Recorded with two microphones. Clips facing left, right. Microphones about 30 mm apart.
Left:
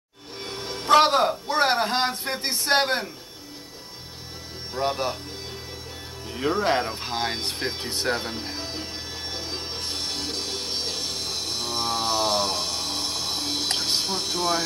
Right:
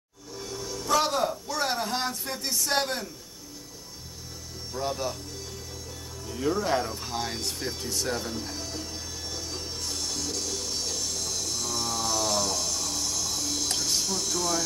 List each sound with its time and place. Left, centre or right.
0.4 s music: left
4.7 s speech: left
6.2 s music: left